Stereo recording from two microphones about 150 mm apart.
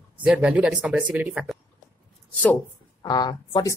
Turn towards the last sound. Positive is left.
turn(degrees=25)  # may be behind; listen again after turning